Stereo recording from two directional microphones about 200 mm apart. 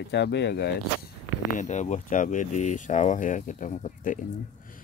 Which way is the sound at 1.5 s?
35° left (ahead or behind).